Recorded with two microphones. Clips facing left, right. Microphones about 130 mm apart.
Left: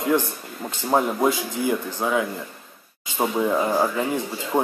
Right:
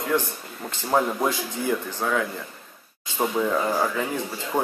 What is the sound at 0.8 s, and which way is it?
Speech, 15° left (ahead or behind).